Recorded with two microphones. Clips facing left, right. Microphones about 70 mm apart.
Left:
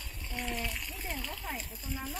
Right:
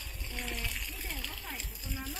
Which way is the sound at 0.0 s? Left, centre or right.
Centre.